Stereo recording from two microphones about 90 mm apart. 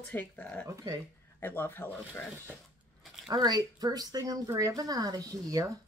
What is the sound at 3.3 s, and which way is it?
Speech, 50° right (ahead or behind).